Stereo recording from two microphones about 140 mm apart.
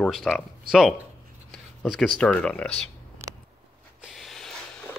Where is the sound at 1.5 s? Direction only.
Centre (ahead or behind).